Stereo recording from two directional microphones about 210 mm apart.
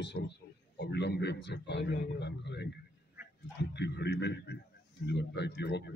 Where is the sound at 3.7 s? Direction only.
55° left (ahead or behind).